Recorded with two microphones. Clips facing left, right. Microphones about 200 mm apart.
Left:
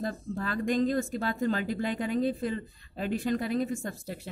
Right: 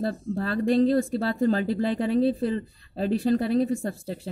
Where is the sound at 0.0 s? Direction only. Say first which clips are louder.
Right 5 dB; 30° right (ahead or behind).